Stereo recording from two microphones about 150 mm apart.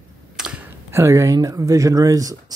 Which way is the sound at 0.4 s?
5° right (ahead or behind).